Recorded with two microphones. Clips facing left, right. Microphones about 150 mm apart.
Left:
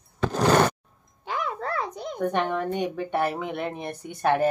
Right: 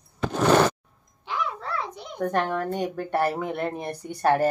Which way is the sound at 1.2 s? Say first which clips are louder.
Left 1 dB; 50° left (ahead or behind).